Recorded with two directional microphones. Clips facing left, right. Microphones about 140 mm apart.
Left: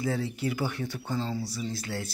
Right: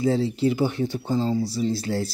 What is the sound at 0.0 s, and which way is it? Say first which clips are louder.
Speech: right 8 dB; 25° right (ahead or behind).